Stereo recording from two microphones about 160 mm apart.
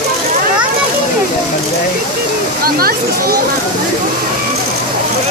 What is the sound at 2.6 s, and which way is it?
Speech, 70° right (ahead or behind).